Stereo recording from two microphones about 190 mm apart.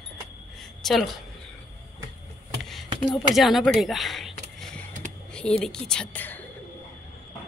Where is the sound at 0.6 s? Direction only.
Centre (ahead or behind).